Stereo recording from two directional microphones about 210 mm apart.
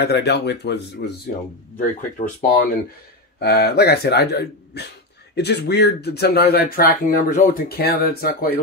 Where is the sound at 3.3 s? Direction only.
50° left (ahead or behind).